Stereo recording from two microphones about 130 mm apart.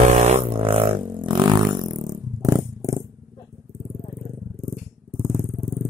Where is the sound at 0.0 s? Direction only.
60° right (ahead or behind); by 3.0 s 25° right (ahead or behind).